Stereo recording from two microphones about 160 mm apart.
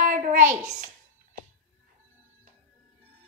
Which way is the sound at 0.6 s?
45° right (ahead or behind).